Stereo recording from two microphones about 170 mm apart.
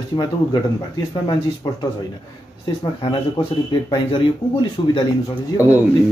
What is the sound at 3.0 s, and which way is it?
Speech, 25° left (ahead or behind).